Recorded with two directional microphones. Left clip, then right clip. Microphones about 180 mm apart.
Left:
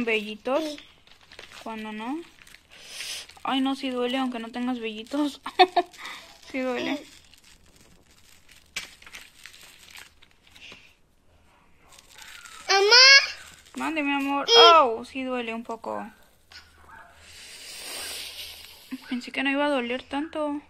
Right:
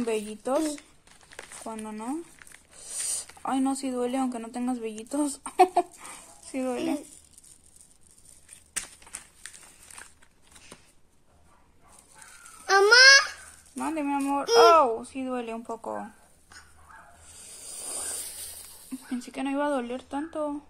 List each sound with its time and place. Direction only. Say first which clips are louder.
0.0 s speech: left 3 dB; 10° right (ahead or behind)
1.6 s speech: left 3 dB; centre (ahead or behind)
12.6 s babbling: even; 50° right (ahead or behind)
13.7 s speech: left 2 dB; centre (ahead or behind)
17.6 s snake: left 3 dB; 5° right (ahead or behind)
18.9 s speech: left 3 dB; centre (ahead or behind)